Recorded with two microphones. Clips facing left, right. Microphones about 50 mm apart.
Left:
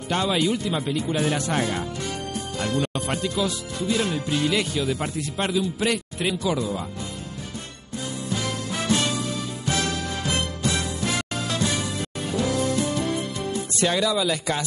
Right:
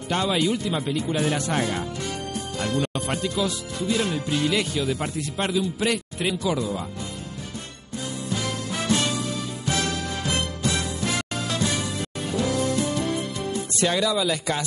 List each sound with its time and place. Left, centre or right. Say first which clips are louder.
0.1 s speech: even; left
8.3 s music: even; left